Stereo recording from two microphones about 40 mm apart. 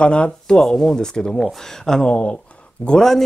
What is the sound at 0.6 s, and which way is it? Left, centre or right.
Speech, centre.